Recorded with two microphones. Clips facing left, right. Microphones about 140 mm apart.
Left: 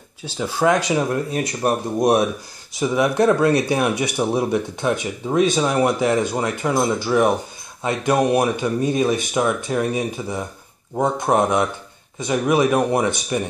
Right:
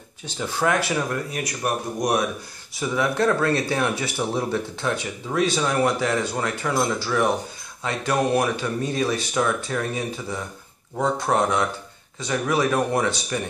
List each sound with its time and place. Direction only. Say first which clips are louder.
0.4 s speech: left 4 dB; 10° left (ahead or behind)